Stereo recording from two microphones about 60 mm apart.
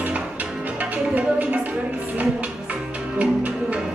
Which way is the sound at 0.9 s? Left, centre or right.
Right.